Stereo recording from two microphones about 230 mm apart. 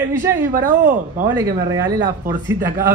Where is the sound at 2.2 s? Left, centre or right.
Centre.